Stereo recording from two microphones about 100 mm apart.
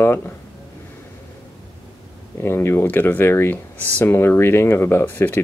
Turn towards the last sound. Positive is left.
turn(degrees=20)  # may be behind; listen again after turning